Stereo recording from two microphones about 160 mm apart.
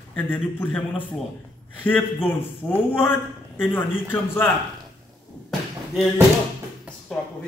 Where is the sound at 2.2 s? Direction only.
10° left (ahead or behind).